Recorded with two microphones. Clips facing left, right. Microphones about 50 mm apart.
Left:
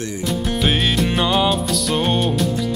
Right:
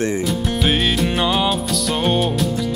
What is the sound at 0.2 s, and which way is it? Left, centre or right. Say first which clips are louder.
Music: right 1 dB; centre.